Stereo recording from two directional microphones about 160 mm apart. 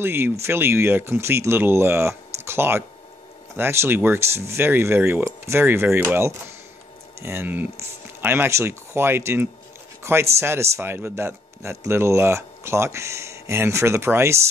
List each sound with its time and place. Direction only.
0.0 s speech: 15° right (ahead or behind)